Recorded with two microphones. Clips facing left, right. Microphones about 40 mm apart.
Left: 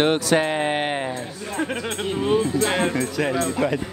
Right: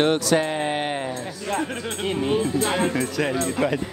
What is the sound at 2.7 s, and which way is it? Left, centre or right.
Speech, left.